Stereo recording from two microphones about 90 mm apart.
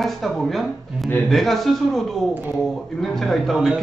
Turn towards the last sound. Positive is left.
turn(degrees=0)  # may be behind; listen again after turning